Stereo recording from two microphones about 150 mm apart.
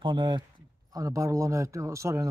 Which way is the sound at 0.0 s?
30° right (ahead or behind).